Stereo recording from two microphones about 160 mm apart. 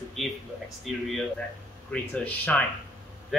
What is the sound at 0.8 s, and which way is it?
Speech, centre (ahead or behind).